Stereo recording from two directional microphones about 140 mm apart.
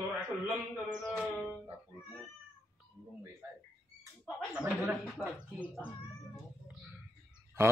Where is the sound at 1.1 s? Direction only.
Centre (ahead or behind).